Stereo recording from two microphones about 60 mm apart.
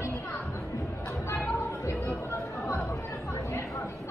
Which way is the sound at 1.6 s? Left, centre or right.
Left.